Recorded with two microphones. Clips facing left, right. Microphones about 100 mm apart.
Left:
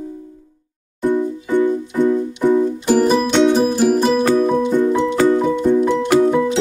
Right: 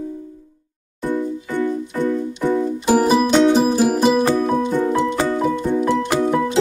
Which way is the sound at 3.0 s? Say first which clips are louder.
Left 1 dB; 5° right (ahead or behind).